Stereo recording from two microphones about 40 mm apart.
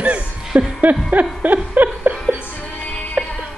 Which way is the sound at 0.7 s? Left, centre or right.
Right.